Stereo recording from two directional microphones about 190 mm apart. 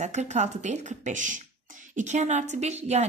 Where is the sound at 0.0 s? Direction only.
40° right (ahead or behind).